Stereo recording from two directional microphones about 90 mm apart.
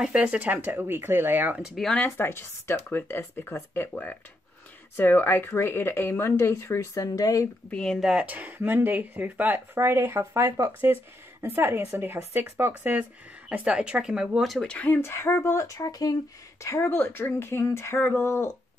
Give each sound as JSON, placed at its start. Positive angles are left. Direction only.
{"t": 0.0, "sound": "speech", "side_deg": -10}
{"t": 1.6, "sound": "speech", "side_deg": 0}
{"t": 2.1, "sound": "speech", "side_deg": 25}
{"t": 7.7, "sound": "speech", "side_deg": 5}
{"t": 8.0, "sound": "speech", "side_deg": -10}
{"t": 13.5, "sound": "speech", "side_deg": -10}
{"t": 14.7, "sound": "speech", "side_deg": 20}
{"t": 16.8, "sound": "speech", "side_deg": 20}